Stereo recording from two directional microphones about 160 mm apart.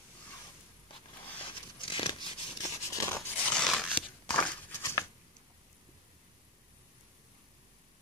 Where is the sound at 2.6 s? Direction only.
20° left (ahead or behind).